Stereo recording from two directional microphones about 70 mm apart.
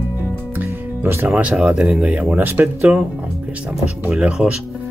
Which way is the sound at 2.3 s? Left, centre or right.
Right.